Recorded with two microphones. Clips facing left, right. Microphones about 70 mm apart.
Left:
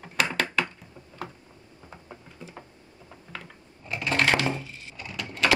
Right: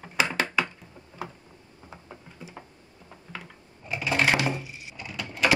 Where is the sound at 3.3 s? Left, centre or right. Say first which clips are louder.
Even; centre.